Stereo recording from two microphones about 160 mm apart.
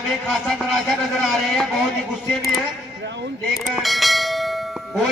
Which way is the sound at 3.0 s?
90° right.